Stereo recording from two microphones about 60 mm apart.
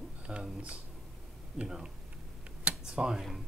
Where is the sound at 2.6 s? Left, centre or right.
Centre.